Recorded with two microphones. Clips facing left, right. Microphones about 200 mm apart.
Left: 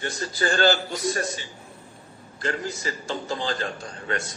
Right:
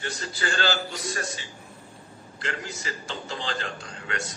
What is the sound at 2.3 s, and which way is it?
A man's voice, 40° left (ahead or behind).